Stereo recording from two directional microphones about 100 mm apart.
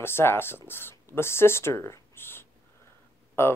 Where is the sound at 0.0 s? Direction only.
25° left (ahead or behind).